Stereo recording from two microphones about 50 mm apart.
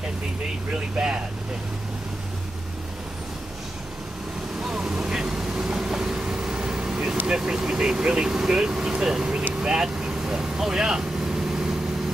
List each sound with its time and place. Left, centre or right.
0.7 s speech: centre
4.6 s vehicle: centre
7.2 s speech: centre
9.6 s vehicle: centre